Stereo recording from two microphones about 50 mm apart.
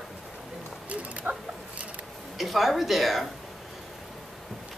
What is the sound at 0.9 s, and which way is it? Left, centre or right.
Mechanisms, right.